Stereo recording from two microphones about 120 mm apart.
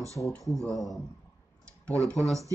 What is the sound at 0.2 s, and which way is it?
Speech, 20° left (ahead or behind).